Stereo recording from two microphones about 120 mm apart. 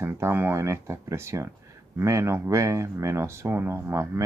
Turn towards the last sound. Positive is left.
turn(degrees=-25)  # may be behind; listen again after turning